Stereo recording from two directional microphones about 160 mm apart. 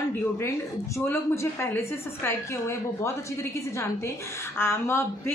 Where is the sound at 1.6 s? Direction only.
15° left (ahead or behind).